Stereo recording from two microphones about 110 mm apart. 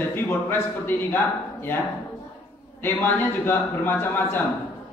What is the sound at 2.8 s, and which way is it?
Speech, 20° left (ahead or behind).